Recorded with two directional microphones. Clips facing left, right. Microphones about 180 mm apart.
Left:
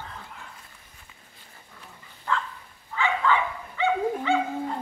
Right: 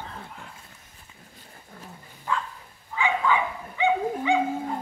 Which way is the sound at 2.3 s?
10° right (ahead or behind).